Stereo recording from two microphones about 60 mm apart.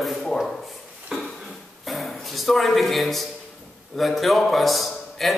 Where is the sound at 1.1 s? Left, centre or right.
Centre.